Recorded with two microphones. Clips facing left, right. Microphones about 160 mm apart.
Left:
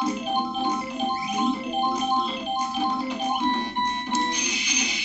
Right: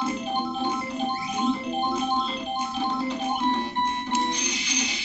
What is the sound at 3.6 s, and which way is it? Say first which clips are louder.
Music: even; 20° right (ahead or behind).